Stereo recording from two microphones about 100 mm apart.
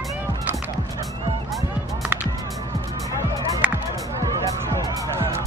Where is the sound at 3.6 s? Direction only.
15° right (ahead or behind).